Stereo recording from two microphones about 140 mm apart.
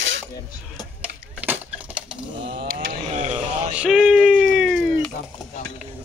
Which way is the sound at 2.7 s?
90° right.